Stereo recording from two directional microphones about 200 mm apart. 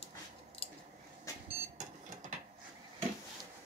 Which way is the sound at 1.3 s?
15° left (ahead or behind).